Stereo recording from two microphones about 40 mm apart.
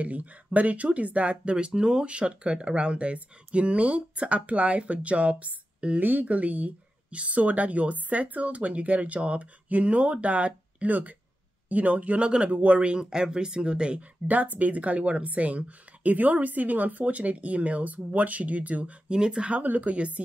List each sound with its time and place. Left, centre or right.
0.0 s speech: right
1.7 s speech: centre
5.9 s speech: right
14.2 s speech: right
19.0 s speech: right
19.6 s speech: right